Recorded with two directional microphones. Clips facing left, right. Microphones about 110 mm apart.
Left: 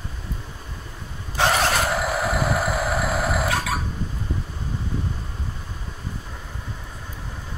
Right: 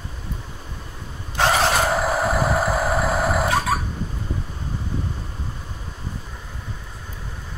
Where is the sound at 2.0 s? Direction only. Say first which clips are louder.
Right 3 dB; 35° right (ahead or behind).